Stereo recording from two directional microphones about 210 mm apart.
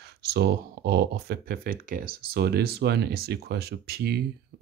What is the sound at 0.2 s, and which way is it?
Speech, 50° right (ahead or behind).